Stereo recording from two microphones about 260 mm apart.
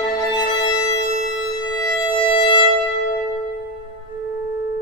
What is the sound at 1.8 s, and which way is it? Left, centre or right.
Music, centre.